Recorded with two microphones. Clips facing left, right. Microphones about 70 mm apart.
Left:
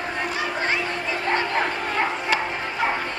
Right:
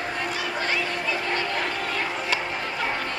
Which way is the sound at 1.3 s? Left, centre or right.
Left.